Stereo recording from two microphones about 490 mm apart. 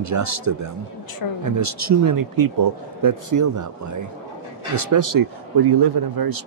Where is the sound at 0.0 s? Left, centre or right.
Right.